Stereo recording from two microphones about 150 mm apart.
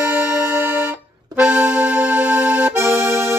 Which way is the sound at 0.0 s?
10° right (ahead or behind).